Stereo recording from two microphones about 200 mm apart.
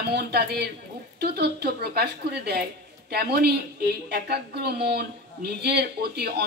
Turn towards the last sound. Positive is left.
turn(degrees=-55)  # may be behind; listen again after turning